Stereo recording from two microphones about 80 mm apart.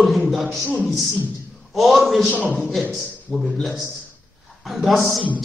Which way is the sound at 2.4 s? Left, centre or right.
Centre.